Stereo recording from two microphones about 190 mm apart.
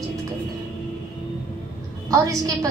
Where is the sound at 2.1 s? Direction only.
20° right (ahead or behind).